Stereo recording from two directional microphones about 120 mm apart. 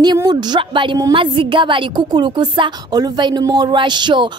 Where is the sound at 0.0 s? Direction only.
35° right (ahead or behind).